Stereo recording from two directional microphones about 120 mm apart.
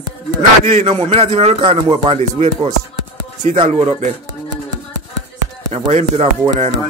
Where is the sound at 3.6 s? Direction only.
85° right.